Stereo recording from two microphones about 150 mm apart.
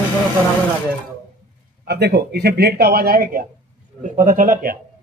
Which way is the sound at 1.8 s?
90° right.